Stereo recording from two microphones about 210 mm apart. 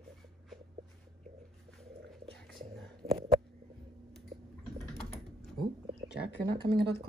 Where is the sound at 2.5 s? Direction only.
Centre (ahead or behind).